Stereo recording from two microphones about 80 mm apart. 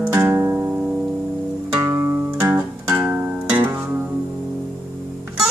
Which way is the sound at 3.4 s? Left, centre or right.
Centre.